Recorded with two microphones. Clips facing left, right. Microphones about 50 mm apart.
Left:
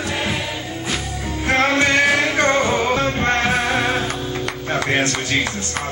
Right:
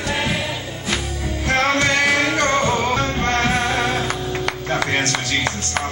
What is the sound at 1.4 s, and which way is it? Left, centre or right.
Music, left.